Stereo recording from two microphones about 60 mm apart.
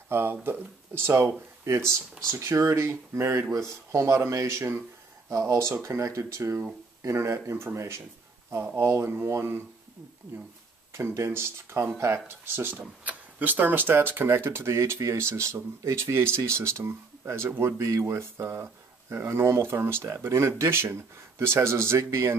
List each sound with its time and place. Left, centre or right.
0.1 s speech: right
1.6 s speech: right
5.3 s speech: right
10.9 s speech: right
12.8 s speech: right